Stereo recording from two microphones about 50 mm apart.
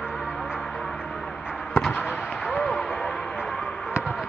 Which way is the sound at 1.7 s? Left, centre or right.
Centre.